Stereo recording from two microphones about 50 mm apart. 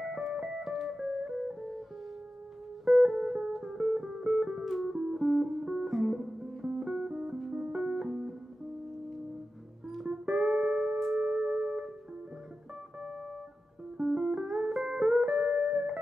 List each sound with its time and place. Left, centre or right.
0.0 s music: centre
3.2 s music: centre
4.6 s music: centre
9.8 s music: centre
11.3 s music: right
13.9 s music: centre